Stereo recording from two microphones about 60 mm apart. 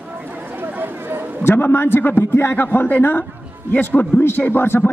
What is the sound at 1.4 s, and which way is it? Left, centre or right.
Speech, left.